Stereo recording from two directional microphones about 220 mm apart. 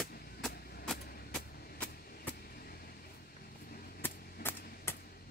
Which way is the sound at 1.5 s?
45° left (ahead or behind).